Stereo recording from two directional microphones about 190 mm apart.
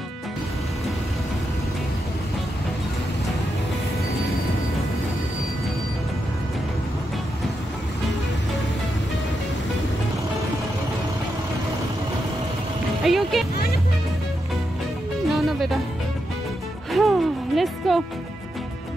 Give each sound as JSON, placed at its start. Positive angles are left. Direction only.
{"t": 13.0, "sound": "music", "side_deg": 0}
{"t": 15.2, "sound": "music", "side_deg": 0}
{"t": 16.9, "sound": "music", "side_deg": 0}